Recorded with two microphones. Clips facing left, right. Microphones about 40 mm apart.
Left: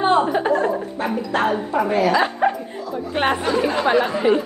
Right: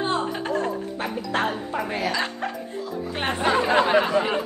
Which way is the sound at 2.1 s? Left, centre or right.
Centre.